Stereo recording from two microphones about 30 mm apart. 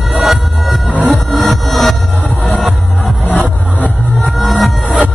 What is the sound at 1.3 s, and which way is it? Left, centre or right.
Music, centre.